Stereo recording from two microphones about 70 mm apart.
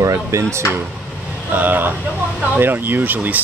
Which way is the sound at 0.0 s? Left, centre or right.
Right.